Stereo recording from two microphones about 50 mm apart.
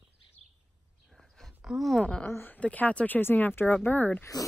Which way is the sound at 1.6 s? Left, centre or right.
Centre.